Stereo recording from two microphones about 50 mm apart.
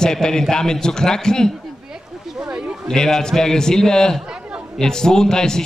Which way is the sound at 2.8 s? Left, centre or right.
Centre.